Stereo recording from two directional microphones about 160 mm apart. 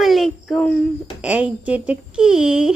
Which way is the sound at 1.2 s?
10° right (ahead or behind).